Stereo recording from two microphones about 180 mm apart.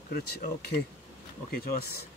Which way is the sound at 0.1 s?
60° left (ahead or behind).